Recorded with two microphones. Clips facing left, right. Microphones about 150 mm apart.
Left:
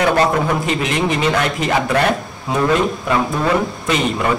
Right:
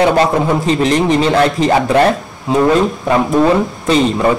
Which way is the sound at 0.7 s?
35° right (ahead or behind).